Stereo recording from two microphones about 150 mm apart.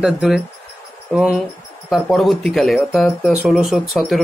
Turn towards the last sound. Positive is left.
turn(degrees=0)  # may be behind; listen again after turning